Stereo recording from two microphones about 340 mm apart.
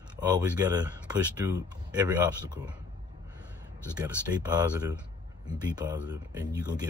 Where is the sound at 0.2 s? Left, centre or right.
Centre.